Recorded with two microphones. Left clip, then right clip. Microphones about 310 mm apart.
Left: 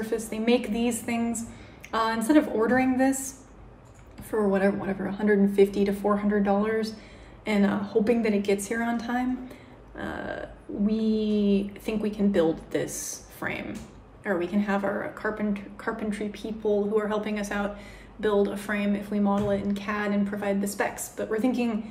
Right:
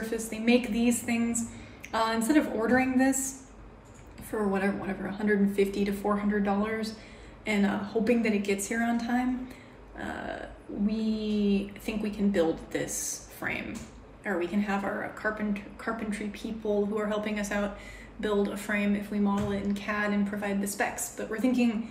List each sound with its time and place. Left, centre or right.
0.0 s speech: centre